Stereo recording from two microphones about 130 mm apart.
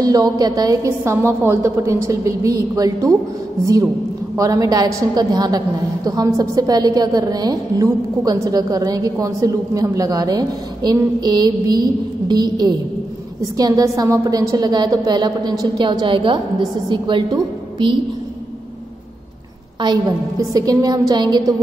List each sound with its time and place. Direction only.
0.0 s a woman's voice: 30° right (ahead or behind)
19.8 s a woman's voice: 35° right (ahead or behind)
21.1 s music: 35° right (ahead or behind)